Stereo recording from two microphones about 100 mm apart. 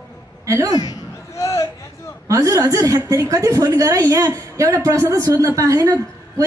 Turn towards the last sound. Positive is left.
turn(degrees=-35)  # may be behind; listen again after turning